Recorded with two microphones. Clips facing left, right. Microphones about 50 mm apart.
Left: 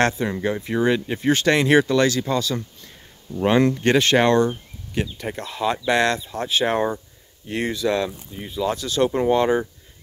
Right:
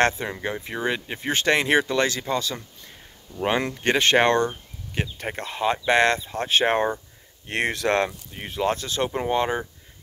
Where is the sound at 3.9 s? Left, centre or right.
Right.